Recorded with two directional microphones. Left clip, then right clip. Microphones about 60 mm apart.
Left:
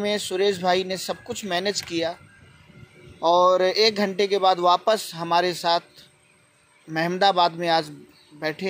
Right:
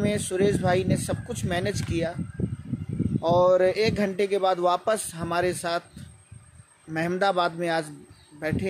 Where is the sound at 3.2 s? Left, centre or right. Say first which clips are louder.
Left 2 dB; right.